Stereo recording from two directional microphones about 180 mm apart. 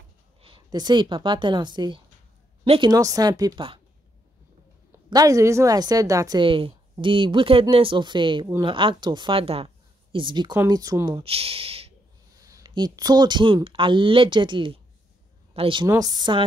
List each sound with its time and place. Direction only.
0.4 s a woman's voice: 25° right (ahead or behind)
2.9 s a woman's voice: 20° right (ahead or behind)
4.9 s a woman's voice: 20° right (ahead or behind)
12.4 s a woman's voice: 20° right (ahead or behind)